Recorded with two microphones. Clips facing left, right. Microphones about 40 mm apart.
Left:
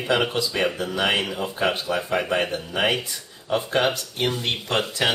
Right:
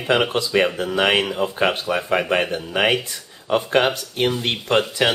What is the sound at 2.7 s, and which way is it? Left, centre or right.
Speech, right.